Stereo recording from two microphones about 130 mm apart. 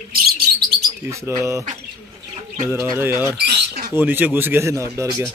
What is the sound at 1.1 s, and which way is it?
Speech, 20° right (ahead or behind).